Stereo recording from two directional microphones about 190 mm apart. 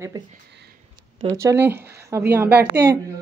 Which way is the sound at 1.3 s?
15° right (ahead or behind).